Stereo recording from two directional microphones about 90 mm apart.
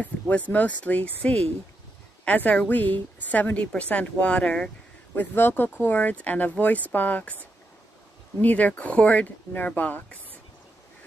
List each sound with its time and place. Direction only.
0.0 s a woman's voice: 15° left (ahead or behind)
5.1 s a woman's voice: 20° left (ahead or behind)